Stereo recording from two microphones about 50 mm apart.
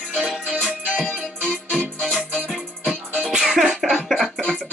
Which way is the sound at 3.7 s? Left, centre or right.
Centre.